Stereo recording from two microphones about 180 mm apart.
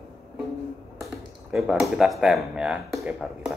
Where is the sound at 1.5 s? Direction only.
Centre (ahead or behind).